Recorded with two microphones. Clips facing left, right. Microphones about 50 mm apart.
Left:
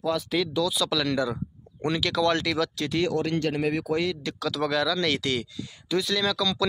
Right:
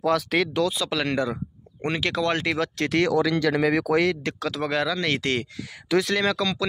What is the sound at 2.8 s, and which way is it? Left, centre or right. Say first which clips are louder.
Speech: right 4 dB; right.